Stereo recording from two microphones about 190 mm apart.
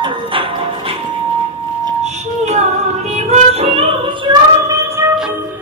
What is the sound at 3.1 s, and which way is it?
Music, 35° right (ahead or behind).